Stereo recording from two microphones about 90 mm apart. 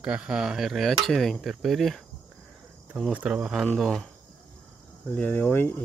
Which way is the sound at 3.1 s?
10° right (ahead or behind).